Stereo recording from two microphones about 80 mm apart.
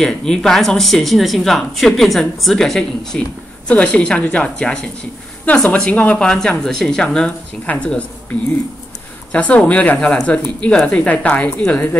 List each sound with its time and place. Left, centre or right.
0.0 s speech: centre
9.3 s speech: centre